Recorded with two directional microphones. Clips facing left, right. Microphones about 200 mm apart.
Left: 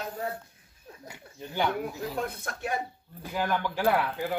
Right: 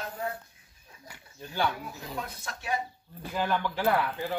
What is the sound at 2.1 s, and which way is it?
Speech, 55° left (ahead or behind).